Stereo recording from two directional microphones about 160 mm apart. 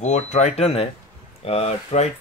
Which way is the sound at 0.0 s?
45° left (ahead or behind).